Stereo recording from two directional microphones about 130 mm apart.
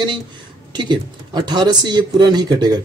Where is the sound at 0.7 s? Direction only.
35° right (ahead or behind).